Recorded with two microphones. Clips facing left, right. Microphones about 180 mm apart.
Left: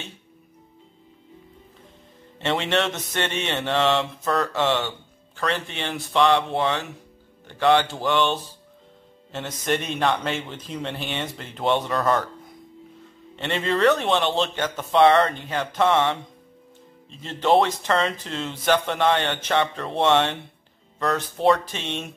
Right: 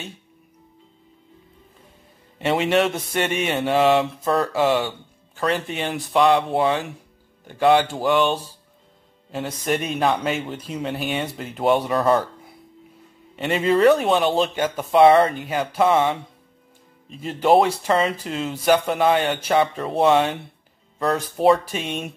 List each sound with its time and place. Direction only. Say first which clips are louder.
2.3 s a man's voice: right 4 dB; 10° right (ahead or behind)
9.7 s a man's voice: right 2 dB; 5° right (ahead or behind)
17.2 s speech: right 3 dB; 10° right (ahead or behind)